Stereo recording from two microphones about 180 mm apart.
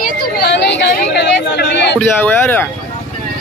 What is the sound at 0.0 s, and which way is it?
Chatter, 60° left (ahead or behind).